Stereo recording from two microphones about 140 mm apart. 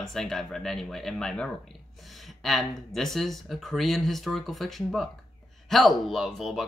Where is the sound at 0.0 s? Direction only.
5° left (ahead or behind).